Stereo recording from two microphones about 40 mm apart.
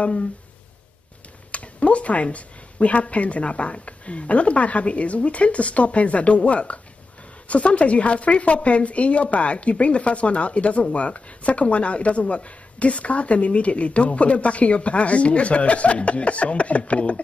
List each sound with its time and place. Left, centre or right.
0.0 s speech: left
1.5 s a sound: left
2.3 s speech: left